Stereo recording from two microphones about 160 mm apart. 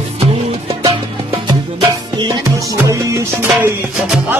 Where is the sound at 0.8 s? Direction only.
25° right (ahead or behind).